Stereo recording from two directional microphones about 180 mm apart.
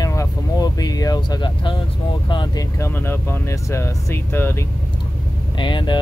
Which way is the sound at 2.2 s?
25° left (ahead or behind).